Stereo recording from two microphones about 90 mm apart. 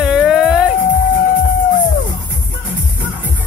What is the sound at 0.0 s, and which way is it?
Music, 5° right (ahead or behind).